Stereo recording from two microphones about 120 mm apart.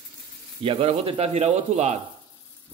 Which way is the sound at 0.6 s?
50° right (ahead or behind).